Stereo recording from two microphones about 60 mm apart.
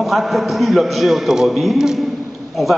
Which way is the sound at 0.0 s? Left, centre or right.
Centre.